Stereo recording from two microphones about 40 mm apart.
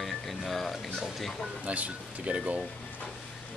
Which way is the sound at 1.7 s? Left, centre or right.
Right.